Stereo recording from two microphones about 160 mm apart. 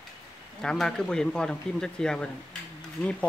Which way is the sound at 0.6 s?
5° left (ahead or behind).